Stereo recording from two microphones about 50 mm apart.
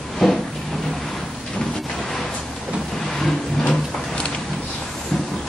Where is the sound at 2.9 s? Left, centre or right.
Centre.